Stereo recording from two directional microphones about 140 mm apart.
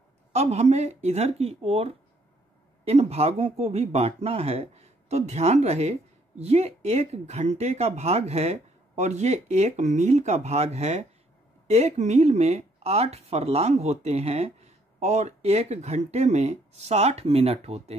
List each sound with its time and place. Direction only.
0.3 s speech: 50° right (ahead or behind)